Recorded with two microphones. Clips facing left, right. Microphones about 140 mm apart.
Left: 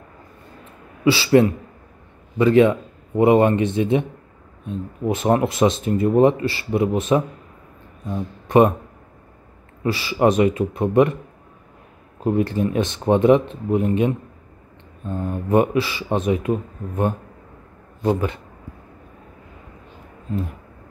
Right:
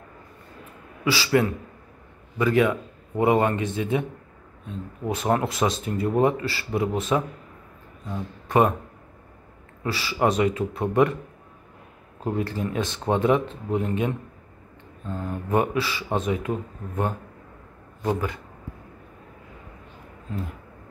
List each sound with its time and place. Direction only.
1.0 s a man's voice: 25° left (ahead or behind)
9.8 s speech: 20° left (ahead or behind)
12.2 s speech: 20° left (ahead or behind)